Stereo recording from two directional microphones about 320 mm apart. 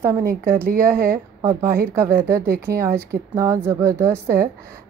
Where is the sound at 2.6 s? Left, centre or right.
Centre.